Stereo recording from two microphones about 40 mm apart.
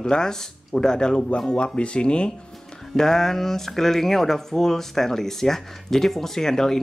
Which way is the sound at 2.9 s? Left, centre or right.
Centre.